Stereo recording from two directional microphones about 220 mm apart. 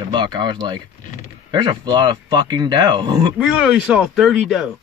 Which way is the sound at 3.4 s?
5° right (ahead or behind).